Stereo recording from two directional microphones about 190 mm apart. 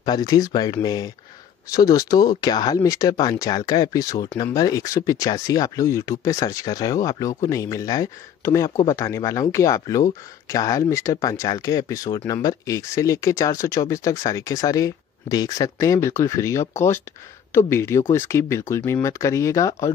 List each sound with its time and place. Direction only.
0.0 s speech: 20° left (ahead or behind)